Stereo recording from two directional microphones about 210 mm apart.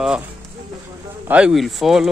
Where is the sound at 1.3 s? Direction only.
5° right (ahead or behind).